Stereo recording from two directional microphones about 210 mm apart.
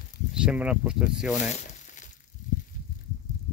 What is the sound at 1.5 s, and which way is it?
Crumpling, 35° left (ahead or behind).